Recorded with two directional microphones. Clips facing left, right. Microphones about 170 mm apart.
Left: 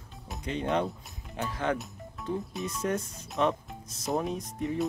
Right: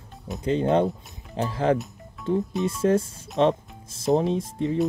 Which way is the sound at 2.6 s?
30° right (ahead or behind).